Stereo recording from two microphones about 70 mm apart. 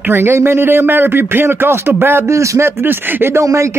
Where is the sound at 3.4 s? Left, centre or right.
Right.